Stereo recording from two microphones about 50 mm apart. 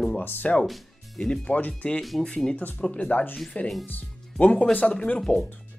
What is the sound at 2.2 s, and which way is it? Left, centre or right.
Speech, centre.